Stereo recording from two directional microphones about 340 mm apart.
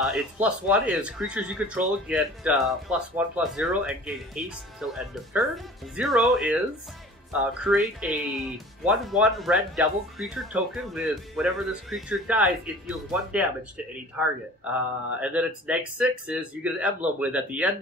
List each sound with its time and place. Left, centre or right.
0.0 s speech: centre
7.6 s speech: centre